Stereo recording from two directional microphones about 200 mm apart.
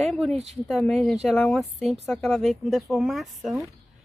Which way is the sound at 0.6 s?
Centre (ahead or behind).